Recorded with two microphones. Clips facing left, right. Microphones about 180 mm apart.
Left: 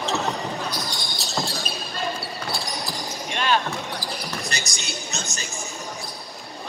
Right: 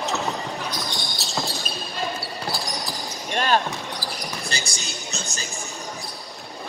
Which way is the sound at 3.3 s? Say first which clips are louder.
Right 2 dB; 40° right (ahead or behind).